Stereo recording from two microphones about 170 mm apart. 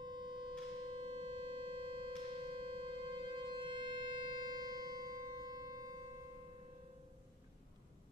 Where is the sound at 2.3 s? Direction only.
30° right (ahead or behind).